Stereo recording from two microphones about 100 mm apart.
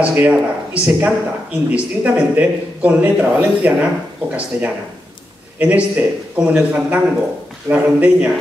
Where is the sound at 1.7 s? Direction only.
15° right (ahead or behind).